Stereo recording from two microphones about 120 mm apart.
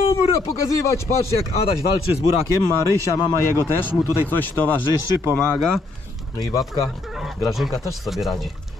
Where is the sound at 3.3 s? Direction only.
20° left (ahead or behind); by 5.8 s 5° left (ahead or behind).